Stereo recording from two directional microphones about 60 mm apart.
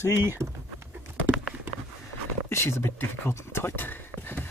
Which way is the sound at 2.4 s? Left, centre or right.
Left.